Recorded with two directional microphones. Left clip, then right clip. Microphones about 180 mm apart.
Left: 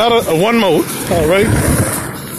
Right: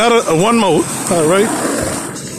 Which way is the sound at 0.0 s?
35° right (ahead or behind).